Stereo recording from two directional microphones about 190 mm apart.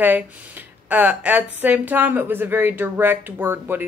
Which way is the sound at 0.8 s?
10° right (ahead or behind).